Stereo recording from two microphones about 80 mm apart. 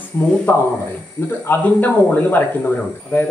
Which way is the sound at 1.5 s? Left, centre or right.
Left.